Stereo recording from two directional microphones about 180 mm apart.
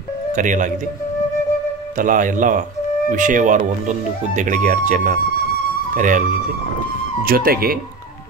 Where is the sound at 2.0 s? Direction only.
45° right (ahead or behind).